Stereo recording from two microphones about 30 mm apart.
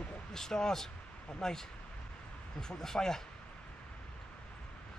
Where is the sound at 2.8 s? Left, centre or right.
Centre.